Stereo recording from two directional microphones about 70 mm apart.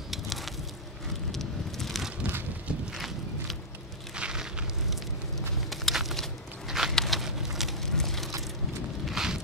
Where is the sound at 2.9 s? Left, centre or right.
Centre.